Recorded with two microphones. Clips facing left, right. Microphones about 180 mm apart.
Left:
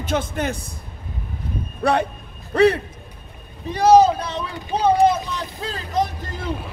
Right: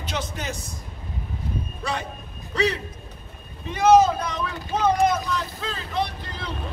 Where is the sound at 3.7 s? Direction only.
35° left (ahead or behind).